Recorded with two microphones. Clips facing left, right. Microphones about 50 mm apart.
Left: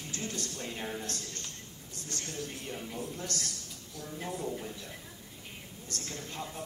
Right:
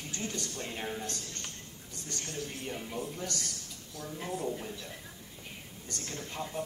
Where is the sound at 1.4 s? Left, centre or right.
Right.